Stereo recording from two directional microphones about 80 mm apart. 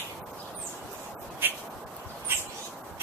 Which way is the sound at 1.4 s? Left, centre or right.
Right.